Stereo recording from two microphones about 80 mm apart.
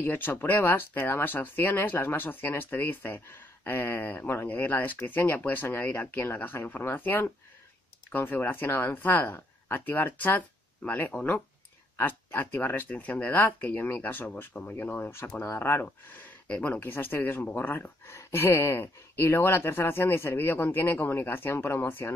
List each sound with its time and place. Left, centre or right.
0.0 s speech: left
16.8 s speech: left